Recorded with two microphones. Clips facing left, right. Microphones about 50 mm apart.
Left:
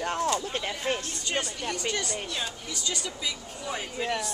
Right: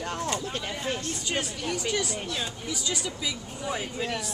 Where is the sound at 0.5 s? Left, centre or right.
Centre.